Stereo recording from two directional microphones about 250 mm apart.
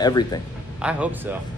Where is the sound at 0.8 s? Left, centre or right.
Centre.